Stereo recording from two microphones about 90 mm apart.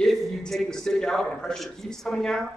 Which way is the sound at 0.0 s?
5° left (ahead or behind).